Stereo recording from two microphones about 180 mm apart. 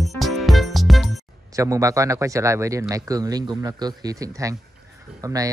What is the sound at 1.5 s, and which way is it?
Speech, 15° right (ahead or behind).